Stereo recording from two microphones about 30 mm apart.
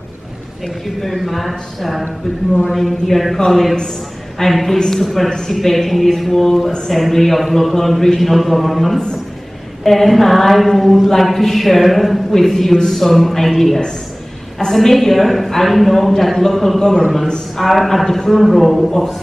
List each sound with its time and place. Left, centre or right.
0.8 s speech: centre
3.3 s a man's voice: centre
4.6 s a man's voice: centre
5.0 s a man's voice: centre
13.0 s a man's voice: centre